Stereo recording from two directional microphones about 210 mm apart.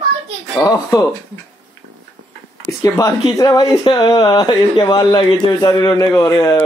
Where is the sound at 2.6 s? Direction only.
15° left (ahead or behind).